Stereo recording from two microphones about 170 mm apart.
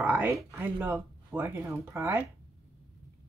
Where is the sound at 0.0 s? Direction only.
10° right (ahead or behind).